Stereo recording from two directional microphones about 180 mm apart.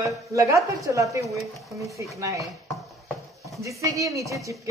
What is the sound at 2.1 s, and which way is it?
Speech, 15° right (ahead or behind).